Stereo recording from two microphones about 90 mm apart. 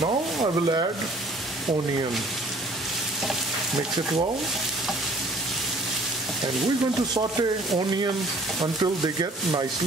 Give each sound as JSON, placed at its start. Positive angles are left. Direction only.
{"t": 0.4, "sound": "speech", "side_deg": -50}
{"t": 7.2, "sound": "speech", "side_deg": -50}